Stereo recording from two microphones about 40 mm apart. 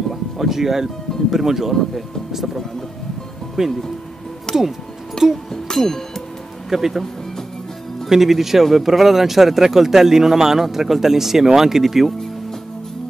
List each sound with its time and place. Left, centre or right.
0.1 s music: centre
1.3 s speech: centre
4.5 s music: centre
5.9 s speech: centre
6.7 s speech: centre
8.1 s speech: centre